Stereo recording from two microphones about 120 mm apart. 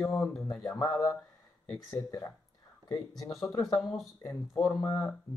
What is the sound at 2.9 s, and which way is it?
Speech, 30° left (ahead or behind).